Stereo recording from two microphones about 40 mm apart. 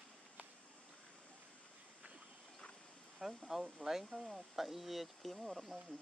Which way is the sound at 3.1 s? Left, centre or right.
Centre.